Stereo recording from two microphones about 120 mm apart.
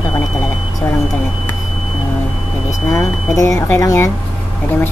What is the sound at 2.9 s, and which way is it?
Speech, 25° left (ahead or behind).